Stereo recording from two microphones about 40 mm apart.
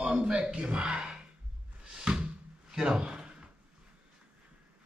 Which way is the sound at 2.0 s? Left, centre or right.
Right.